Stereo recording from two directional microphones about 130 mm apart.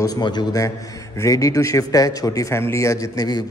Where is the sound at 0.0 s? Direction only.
30° left (ahead or behind).